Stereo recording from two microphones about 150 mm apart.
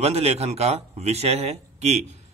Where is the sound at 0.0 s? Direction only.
45° right (ahead or behind).